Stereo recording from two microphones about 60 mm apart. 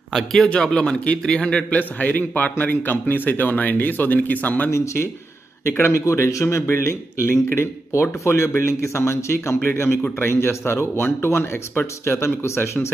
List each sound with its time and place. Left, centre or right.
0.1 s a man's voice: centre
0.5 s a man's voice: centre
4.6 s speech: left
7.5 s speech: left
9.6 s a man's voice: left